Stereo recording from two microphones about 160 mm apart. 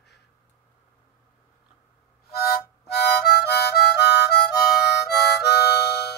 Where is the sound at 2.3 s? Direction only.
70° left (ahead or behind).